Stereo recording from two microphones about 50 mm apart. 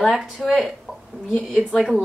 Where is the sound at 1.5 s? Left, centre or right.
Centre.